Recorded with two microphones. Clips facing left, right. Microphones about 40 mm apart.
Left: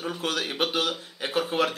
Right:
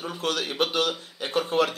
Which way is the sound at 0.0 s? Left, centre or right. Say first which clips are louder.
Even; centre.